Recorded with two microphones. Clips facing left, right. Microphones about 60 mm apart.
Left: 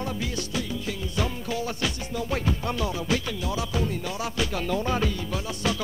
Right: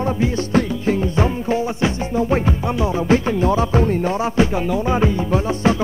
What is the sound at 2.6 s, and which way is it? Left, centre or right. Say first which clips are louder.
Music: right 8 dB; right.